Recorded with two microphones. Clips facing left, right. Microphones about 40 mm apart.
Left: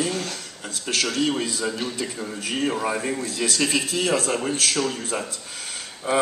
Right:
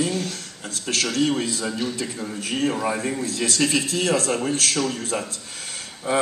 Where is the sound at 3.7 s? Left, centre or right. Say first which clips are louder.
Right 1 dB; left.